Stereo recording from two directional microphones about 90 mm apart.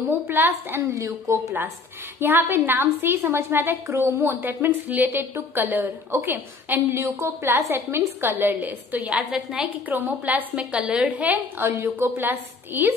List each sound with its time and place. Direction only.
0.1 s a woman's voice: 20° right (ahead or behind)
9.8 s a woman's voice: 20° right (ahead or behind)
11.6 s a woman's voice: 30° right (ahead or behind)